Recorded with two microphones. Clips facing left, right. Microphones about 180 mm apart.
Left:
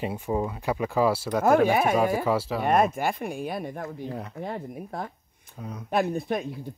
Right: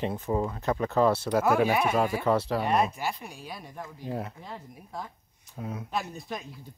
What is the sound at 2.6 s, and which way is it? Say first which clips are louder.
Speech: left 4 dB; 50° left (ahead or behind).